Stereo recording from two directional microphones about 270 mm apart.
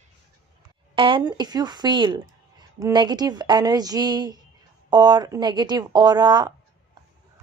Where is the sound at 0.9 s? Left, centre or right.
Centre.